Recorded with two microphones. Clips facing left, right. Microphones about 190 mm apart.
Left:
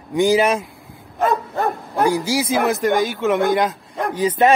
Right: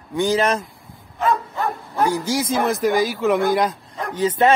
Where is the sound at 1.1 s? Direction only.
45° left (ahead or behind).